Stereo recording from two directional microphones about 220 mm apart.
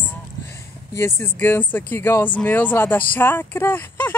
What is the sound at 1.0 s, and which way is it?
Speech, 10° left (ahead or behind).